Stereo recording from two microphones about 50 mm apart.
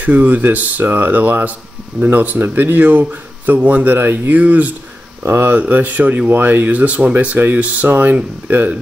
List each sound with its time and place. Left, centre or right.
0.0 s speech: right
5.2 s speech: right
5.5 s speech: right